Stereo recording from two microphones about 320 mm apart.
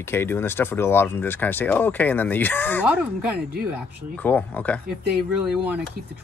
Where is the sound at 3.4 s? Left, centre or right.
Right.